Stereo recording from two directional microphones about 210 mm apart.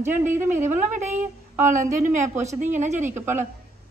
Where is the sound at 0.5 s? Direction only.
35° right (ahead or behind).